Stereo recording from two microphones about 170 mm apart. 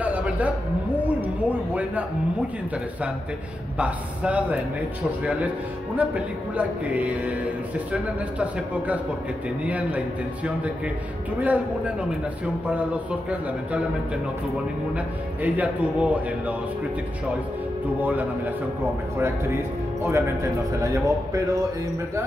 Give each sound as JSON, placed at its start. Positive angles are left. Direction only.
{"t": 0.0, "sound": "a sound", "side_deg": -10}
{"t": 3.7, "sound": "speech", "side_deg": -10}
{"t": 15.4, "sound": "speech", "side_deg": -10}
{"t": 18.0, "sound": "speech", "side_deg": -10}
{"t": 20.0, "sound": "speech", "side_deg": -15}